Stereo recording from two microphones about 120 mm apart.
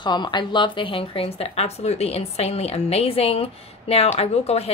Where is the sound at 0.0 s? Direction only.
40° left (ahead or behind).